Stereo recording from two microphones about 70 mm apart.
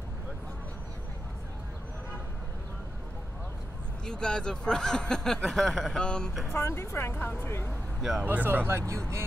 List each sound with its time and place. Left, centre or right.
4.0 s speech: centre
6.6 s speech: left
8.0 s speech: centre
8.3 s speech: right